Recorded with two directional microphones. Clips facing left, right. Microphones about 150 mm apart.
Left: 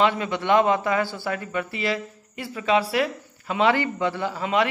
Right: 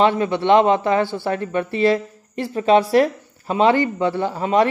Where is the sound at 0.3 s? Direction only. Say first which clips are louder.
Right 5 dB; 20° right (ahead or behind).